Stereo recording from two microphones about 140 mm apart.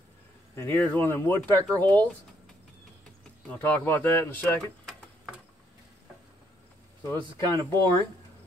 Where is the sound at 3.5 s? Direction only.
10° left (ahead or behind).